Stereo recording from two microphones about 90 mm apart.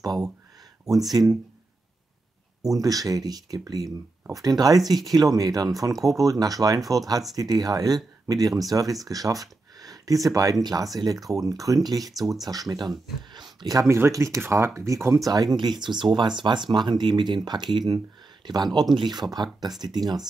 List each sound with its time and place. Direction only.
1.2 s speech: 50° right (ahead or behind)
2.6 s speech: 40° right (ahead or behind)
15.2 s speech: 45° right (ahead or behind)